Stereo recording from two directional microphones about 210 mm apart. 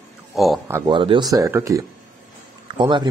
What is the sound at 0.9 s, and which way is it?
Speech, 25° right (ahead or behind).